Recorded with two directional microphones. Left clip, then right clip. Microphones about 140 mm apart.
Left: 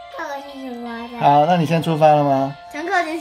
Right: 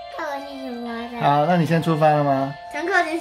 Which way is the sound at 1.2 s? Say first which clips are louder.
Left 4 dB; 15° left (ahead or behind).